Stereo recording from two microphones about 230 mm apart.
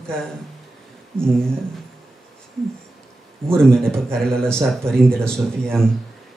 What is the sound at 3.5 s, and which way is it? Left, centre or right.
A man's voice, centre.